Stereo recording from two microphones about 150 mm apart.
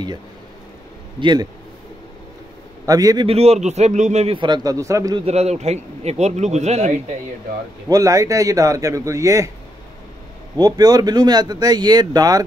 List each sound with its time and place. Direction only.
1.2 s speech: 30° right (ahead or behind)
2.9 s speech: 25° right (ahead or behind)
3.3 s speech: 45° right (ahead or behind)
4.4 s speech: 25° right (ahead or behind)
5.2 s speech: 45° right (ahead or behind)
7.9 s speech: 20° right (ahead or behind)
10.6 s speech: 25° right (ahead or behind)